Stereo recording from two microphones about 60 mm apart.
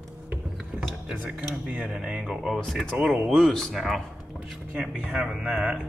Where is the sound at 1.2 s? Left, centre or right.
Centre.